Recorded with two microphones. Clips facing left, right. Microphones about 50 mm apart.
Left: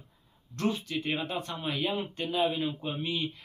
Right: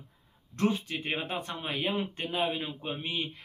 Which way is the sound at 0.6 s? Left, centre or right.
Right.